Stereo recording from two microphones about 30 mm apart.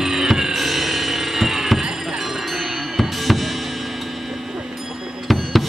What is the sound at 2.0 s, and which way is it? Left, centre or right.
Music, centre.